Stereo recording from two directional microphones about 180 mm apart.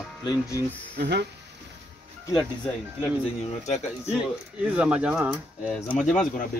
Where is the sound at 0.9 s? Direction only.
65° right (ahead or behind).